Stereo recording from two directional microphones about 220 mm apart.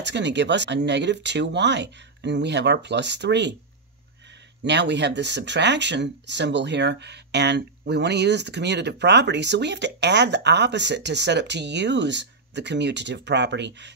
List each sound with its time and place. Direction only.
0.0 s speech: 50° right (ahead or behind)
4.6 s speech: 50° right (ahead or behind)